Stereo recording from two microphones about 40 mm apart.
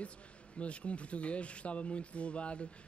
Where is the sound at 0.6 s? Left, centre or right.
Left.